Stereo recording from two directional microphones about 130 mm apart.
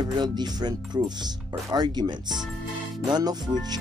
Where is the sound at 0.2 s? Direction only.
35° right (ahead or behind).